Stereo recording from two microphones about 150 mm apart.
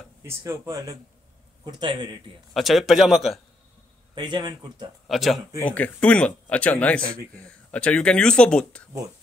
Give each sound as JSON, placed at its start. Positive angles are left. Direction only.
{"t": 0.2, "sound": "a man's voice", "side_deg": -20}
{"t": 2.5, "sound": "speech", "side_deg": 0}
{"t": 4.1, "sound": "speech", "side_deg": -30}
{"t": 5.0, "sound": "speech", "side_deg": 0}